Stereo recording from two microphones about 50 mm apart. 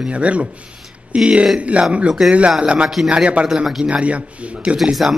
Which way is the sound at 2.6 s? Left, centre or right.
Centre.